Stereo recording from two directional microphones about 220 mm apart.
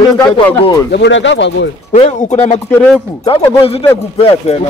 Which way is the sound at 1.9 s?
35° left (ahead or behind).